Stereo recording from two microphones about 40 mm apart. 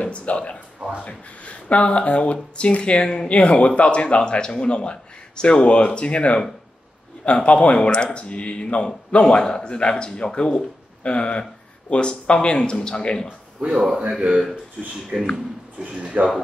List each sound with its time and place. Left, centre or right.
0.0 s speech: left
9.2 s speech: left
13.7 s speech: centre
14.2 s speech: right
16.0 s speech: right